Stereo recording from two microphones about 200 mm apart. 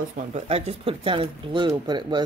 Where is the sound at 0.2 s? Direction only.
30° right (ahead or behind).